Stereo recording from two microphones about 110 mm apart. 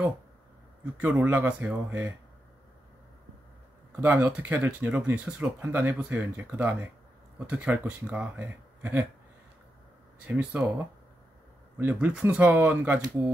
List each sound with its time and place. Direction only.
0.9 s speech: 15° right (ahead or behind)
3.9 s speech: 15° right (ahead or behind)
10.2 s speech: 15° right (ahead or behind)
11.8 s speech: 15° right (ahead or behind)